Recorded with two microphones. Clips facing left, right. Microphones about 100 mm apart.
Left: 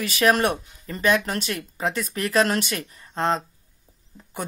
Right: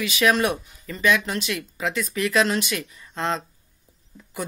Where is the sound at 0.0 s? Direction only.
45° left (ahead or behind).